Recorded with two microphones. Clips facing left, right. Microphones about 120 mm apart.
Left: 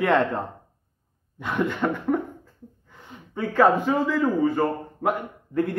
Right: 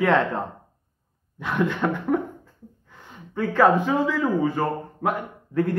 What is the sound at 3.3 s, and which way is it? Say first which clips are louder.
Speech: right 1 dB; 5° left (ahead or behind).